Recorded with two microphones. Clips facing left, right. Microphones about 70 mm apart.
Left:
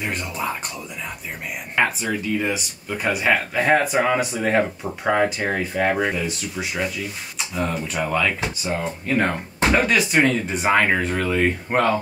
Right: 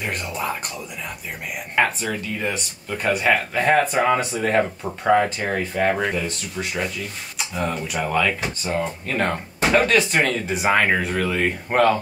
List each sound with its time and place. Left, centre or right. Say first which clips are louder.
0.0 s speech: even; centre
1.9 s speech: left 2 dB; centre
9.0 s speech: left 2 dB; centre